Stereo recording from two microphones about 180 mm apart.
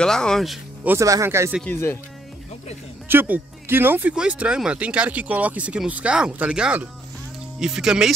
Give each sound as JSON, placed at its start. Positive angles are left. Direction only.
{"t": 0.0, "sound": "speech", "side_deg": 5}
{"t": 0.9, "sound": "speech", "side_deg": -15}
{"t": 1.6, "sound": "speech", "side_deg": 10}
{"t": 3.1, "sound": "speech", "side_deg": -10}